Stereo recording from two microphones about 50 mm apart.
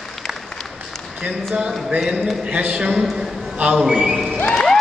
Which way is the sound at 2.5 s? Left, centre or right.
Right.